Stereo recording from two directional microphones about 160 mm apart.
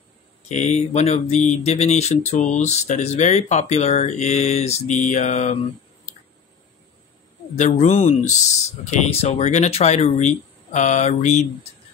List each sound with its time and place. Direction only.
0.5 s speech: 45° left (ahead or behind)
7.5 s speech: 45° left (ahead or behind)